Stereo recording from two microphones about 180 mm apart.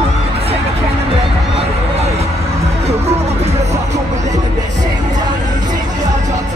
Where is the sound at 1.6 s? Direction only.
35° right (ahead or behind).